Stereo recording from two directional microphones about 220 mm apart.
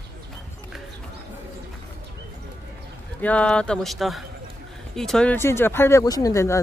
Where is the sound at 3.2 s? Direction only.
5° left (ahead or behind).